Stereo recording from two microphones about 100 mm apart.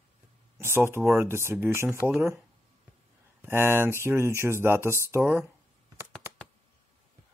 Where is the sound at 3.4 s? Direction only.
25° right (ahead or behind).